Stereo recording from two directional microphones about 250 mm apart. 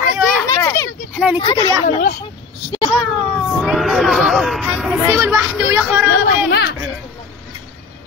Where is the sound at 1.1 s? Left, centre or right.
Centre.